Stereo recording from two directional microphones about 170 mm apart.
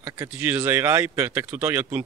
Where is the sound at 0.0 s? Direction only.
10° right (ahead or behind).